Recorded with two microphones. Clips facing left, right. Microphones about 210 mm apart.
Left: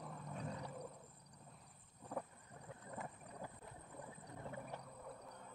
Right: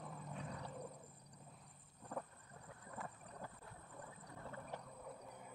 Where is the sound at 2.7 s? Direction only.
20° left (ahead or behind).